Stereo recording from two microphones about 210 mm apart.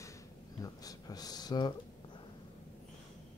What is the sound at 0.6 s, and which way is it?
Speech, 15° left (ahead or behind).